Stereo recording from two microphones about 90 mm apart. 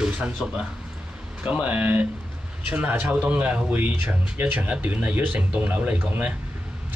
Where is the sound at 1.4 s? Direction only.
15° right (ahead or behind).